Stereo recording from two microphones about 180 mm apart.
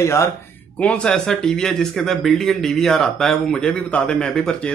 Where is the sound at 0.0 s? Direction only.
15° left (ahead or behind).